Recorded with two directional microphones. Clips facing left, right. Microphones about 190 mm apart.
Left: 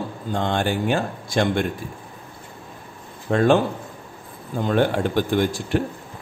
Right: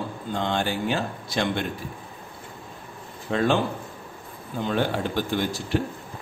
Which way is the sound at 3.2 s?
50° left (ahead or behind).